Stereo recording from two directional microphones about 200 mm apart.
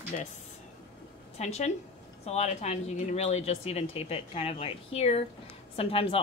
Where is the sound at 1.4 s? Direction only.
35° left (ahead or behind).